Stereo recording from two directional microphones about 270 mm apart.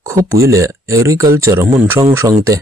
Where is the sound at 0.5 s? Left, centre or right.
Centre.